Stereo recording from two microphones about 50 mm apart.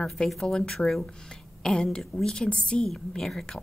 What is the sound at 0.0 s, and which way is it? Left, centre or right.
A woman's voice, centre.